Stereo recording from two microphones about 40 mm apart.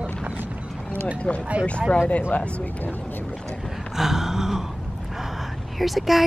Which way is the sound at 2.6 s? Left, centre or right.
Left.